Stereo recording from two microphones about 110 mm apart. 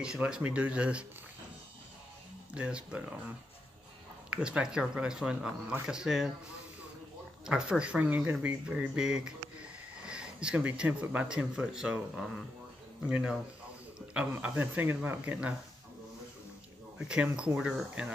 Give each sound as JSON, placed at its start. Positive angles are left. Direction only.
{"t": 0.0, "sound": "speech", "side_deg": -5}
{"t": 2.5, "sound": "speech", "side_deg": -10}
{"t": 4.3, "sound": "speech", "side_deg": -10}
{"t": 7.4, "sound": "speech", "side_deg": -5}
{"t": 14.4, "sound": "speech", "side_deg": -15}
{"t": 17.1, "sound": "speech", "side_deg": -10}